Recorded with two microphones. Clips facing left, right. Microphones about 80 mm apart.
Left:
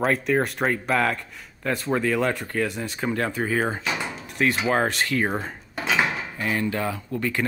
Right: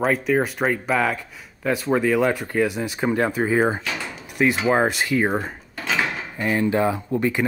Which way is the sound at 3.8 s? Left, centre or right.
Left.